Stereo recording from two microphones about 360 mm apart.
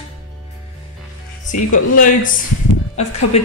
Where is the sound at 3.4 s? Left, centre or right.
Centre.